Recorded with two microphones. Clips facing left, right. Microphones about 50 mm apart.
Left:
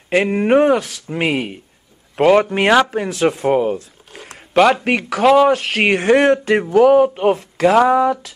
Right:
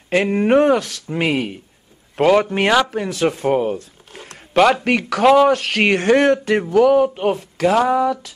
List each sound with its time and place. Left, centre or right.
0.1 s speech: centre
2.9 s speech: left
3.3 s speech: centre
4.1 s a sound: centre
4.6 s speech: centre
6.7 s speech: left